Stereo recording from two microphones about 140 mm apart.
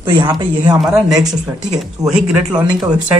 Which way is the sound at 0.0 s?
30° right (ahead or behind).